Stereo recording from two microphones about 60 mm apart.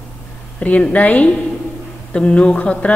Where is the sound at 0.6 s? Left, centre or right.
Left.